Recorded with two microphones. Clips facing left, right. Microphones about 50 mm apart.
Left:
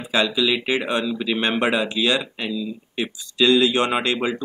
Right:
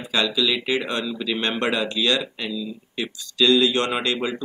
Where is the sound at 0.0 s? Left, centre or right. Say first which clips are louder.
Left 2 dB; centre.